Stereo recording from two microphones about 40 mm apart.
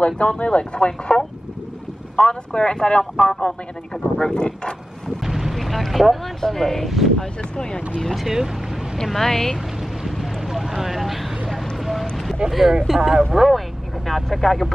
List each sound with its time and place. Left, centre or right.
0.4 s speech: left
5.2 s speech: centre
7.5 s speech: centre
8.2 s speech: centre
8.9 s speech: centre
10.0 s vehicle: centre
12.4 s speech: centre